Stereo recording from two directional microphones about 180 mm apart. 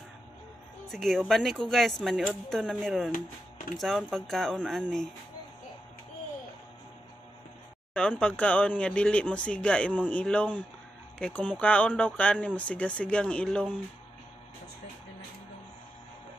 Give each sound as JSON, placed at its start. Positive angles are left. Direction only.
{"t": 0.8, "sound": "speech", "side_deg": 0}
{"t": 3.1, "sound": "speech", "side_deg": 45}
{"t": 3.7, "sound": "speech", "side_deg": 0}
{"t": 7.9, "sound": "speech", "side_deg": 5}